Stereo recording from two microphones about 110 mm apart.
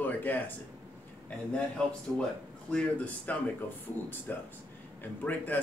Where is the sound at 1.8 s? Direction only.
10° left (ahead or behind).